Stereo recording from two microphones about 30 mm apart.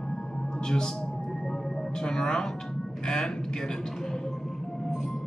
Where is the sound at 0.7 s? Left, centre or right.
Left.